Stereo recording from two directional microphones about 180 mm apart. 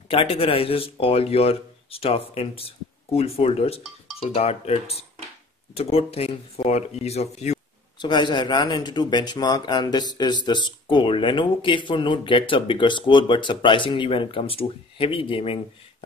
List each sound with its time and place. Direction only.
0.1 s speech: 30° left (ahead or behind)
8.0 s speech: 25° left (ahead or behind)